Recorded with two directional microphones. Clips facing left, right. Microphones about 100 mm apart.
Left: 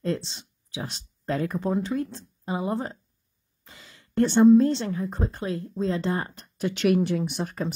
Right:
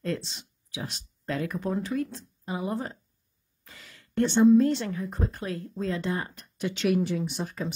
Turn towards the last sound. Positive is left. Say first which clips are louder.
# left 3 dB
turn(degrees=55)  # may be behind; listen again after turning